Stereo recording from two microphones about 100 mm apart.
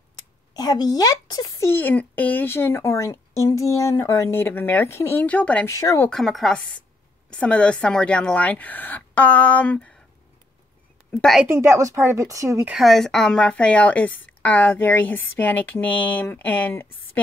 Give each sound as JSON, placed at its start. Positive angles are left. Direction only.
{"t": 0.6, "sound": "speech", "side_deg": 40}
{"t": 1.6, "sound": "a woman's voice", "side_deg": 20}
{"t": 5.7, "sound": "speech", "side_deg": 35}
{"t": 6.0, "sound": "a woman's voice", "side_deg": 0}
{"t": 11.1, "sound": "a woman's voice", "side_deg": 10}
{"t": 11.5, "sound": "speech", "side_deg": -25}
{"t": 12.8, "sound": "a woman's voice", "side_deg": 5}